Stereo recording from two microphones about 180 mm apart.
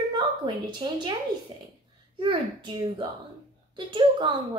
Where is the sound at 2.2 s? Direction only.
25° right (ahead or behind).